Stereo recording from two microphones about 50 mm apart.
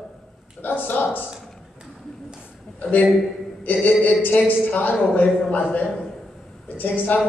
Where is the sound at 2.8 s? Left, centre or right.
Left.